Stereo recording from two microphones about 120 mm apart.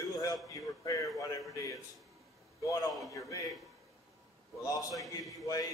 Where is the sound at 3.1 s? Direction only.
25° left (ahead or behind).